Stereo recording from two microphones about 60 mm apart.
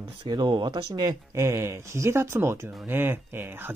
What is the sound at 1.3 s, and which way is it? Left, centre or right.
Speech, right.